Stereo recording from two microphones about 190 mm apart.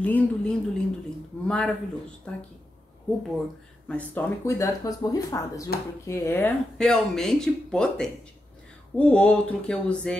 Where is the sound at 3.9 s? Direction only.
5° left (ahead or behind).